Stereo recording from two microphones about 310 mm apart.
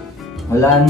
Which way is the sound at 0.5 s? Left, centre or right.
Centre.